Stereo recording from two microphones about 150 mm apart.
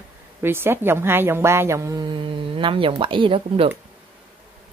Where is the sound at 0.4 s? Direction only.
15° right (ahead or behind); by 3.7 s 35° right (ahead or behind).